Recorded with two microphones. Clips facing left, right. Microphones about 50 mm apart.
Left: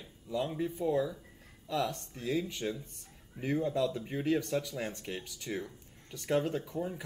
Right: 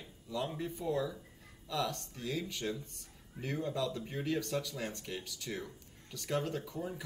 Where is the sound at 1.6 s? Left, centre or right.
Left.